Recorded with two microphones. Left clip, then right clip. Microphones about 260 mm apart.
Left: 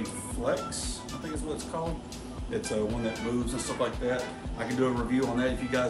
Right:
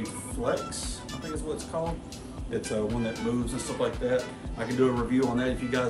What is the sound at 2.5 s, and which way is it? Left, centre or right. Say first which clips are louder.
Speech: right 1 dB; centre.